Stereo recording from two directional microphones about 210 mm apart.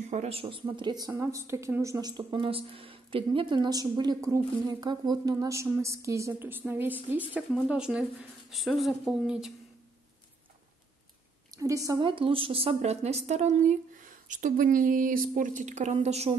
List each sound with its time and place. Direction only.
0.1 s a woman's voice: 30° right (ahead or behind); by 9.5 s centre (ahead or behind)
11.5 s a woman's voice: 15° right (ahead or behind); by 16.3 s 30° right (ahead or behind)